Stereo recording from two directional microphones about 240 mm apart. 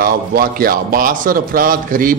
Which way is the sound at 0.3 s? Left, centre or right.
Right.